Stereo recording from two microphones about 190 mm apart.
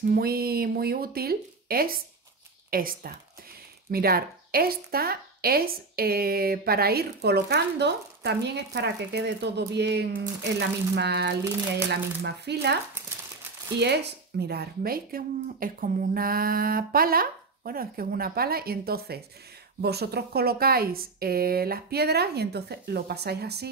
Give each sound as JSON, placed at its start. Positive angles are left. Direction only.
{"t": 0.0, "sound": "a woman's voice", "side_deg": -50}
{"t": 13.7, "sound": "a woman's voice", "side_deg": -60}